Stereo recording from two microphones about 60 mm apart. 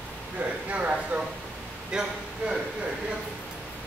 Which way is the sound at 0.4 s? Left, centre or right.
Right.